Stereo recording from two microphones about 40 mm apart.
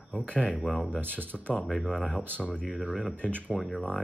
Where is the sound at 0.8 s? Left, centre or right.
Right.